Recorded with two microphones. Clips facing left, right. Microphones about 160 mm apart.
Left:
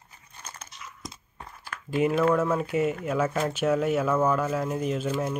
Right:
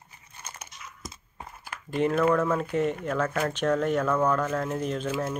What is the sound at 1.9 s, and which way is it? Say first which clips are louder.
Speech: left 1 dB; 5° left (ahead or behind).